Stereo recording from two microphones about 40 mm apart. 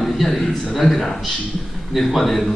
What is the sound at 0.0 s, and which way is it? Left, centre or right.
A man's voice, centre.